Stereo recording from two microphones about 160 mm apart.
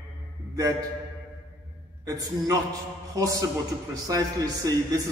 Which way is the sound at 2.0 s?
20° right (ahead or behind).